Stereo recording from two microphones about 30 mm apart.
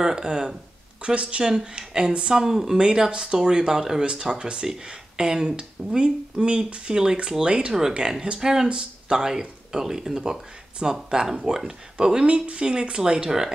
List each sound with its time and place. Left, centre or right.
0.0 s speech: right
1.0 s speech: right
1.6 s speech: right
2.3 s speech: centre
3.1 s speech: right
4.0 s speech: right
5.6 s speech: right
7.4 s speech: right
8.0 s speech: right
12.3 s speech: right